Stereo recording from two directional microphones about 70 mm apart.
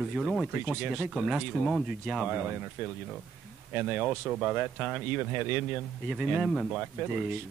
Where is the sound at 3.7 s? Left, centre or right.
Right.